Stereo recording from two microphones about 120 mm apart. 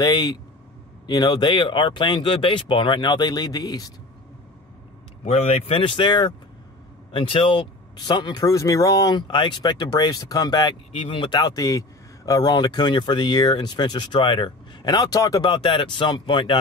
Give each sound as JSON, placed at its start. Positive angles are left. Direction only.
{"t": 0.0, "sound": "speech", "side_deg": 35}
{"t": 5.2, "sound": "speech", "side_deg": 60}
{"t": 7.1, "sound": "speech", "side_deg": 45}
{"t": 10.9, "sound": "speech", "side_deg": 50}